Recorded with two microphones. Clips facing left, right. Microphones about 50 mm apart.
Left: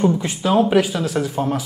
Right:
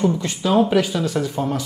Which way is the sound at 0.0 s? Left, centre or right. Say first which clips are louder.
Left 2 dB; centre.